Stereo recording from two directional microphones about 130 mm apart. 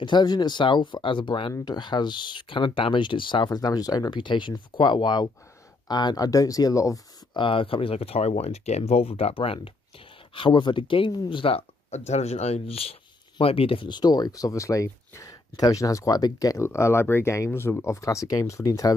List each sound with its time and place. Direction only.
0.0 s speech: 35° left (ahead or behind)
7.3 s speech: 40° left (ahead or behind)